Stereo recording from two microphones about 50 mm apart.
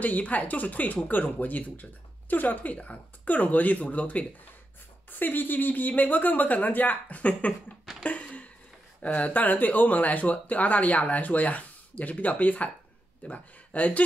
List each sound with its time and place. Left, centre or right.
0.0 s speech: left
5.2 s speech: left
8.0 s a sound: left
9.0 s speech: left